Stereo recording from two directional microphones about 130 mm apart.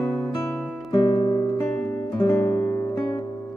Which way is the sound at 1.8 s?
20° left (ahead or behind).